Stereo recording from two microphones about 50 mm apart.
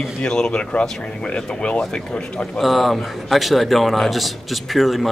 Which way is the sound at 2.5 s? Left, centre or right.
Centre.